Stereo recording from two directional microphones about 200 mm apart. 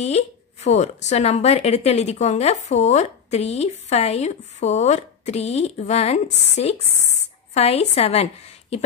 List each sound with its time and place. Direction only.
0.0 s speech: 35° left (ahead or behind)